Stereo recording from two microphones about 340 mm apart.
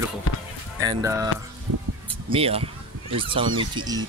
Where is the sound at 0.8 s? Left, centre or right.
Centre.